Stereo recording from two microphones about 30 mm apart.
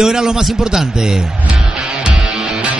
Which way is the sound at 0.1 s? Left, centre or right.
Centre.